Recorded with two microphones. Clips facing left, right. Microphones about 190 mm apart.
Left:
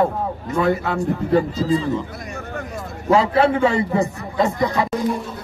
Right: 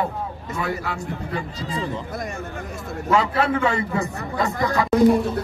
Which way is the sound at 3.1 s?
30° left (ahead or behind).